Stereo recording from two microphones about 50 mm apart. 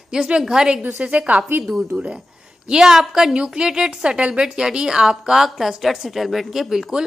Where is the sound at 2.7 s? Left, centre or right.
Centre.